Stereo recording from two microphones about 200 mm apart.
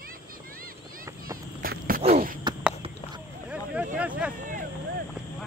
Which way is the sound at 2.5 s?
20° right (ahead or behind).